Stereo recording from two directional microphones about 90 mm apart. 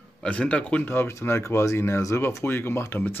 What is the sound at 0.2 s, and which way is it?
Speech, 15° left (ahead or behind).